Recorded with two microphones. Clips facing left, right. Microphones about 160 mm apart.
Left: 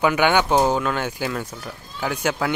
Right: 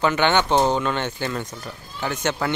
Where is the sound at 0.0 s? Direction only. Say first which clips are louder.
Left 1 dB; 10° left (ahead or behind).